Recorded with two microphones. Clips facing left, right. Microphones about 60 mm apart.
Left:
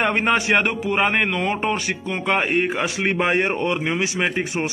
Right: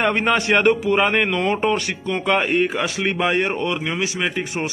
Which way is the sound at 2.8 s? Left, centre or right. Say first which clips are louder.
Even; left.